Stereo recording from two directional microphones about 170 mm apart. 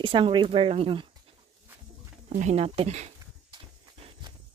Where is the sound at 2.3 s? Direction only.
45° right (ahead or behind).